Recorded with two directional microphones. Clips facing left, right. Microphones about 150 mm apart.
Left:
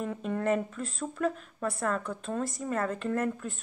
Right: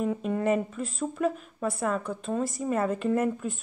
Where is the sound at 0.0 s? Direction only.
5° right (ahead or behind).